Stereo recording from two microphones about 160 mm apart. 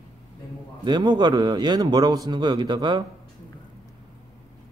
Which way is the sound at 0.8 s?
25° right (ahead or behind).